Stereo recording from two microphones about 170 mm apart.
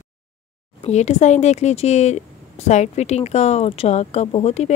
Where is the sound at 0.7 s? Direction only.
40° left (ahead or behind).